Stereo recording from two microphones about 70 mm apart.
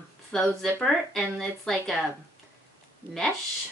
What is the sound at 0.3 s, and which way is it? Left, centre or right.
A woman's voice, centre.